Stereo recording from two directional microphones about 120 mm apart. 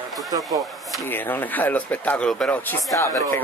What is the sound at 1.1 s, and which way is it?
Speech, 15° left (ahead or behind).